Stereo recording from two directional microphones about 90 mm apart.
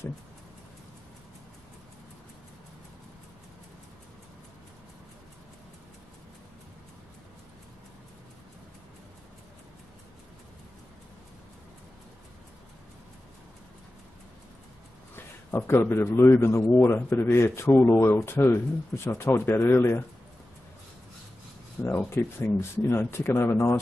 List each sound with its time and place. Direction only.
15.1 s a man's voice: 25° left (ahead or behind)
21.8 s a man's voice: 30° left (ahead or behind)